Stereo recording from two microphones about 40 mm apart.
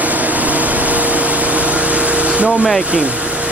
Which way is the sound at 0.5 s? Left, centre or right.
Right.